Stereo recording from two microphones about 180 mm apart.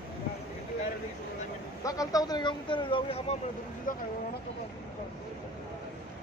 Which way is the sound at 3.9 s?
50° left (ahead or behind).